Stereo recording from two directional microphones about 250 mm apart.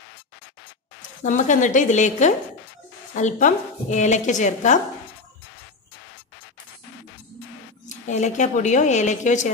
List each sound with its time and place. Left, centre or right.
1.2 s a woman's voice: left
7.9 s a woman's voice: left